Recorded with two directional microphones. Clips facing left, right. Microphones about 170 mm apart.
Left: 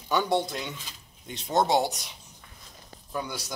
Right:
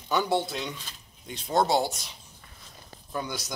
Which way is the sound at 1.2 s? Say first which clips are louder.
Even; 25° left (ahead or behind).